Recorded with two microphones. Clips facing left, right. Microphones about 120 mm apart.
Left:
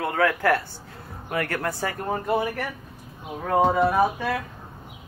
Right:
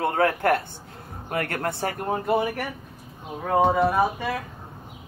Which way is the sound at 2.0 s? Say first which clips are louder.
Right 1 dB; 10° right (ahead or behind).